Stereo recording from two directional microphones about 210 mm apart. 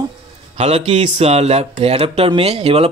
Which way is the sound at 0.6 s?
30° right (ahead or behind).